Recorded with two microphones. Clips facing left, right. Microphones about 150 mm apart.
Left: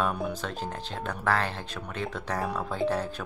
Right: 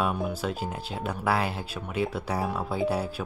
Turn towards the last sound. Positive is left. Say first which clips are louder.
# right 1 dB
turn(degrees=-10)  # may be behind; listen again after turning